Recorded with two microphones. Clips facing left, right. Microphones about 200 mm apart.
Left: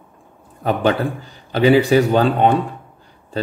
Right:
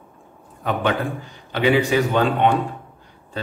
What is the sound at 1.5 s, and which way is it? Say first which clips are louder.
Speech: left 5 dB; 35° left (ahead or behind).